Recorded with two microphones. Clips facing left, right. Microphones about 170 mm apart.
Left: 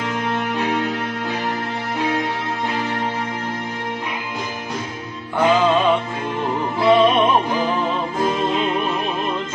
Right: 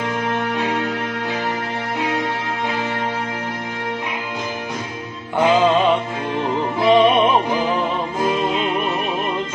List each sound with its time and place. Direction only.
5.4 s music: 15° right (ahead or behind)